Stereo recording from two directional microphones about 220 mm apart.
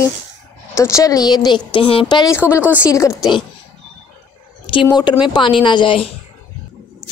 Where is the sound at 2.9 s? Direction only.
15° left (ahead or behind).